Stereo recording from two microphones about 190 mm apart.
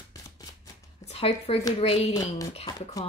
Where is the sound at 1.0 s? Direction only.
30° left (ahead or behind).